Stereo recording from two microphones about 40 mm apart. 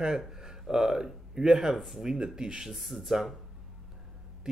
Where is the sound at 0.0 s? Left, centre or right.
Centre.